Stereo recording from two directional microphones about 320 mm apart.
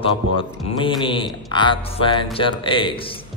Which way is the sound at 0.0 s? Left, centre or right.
Centre.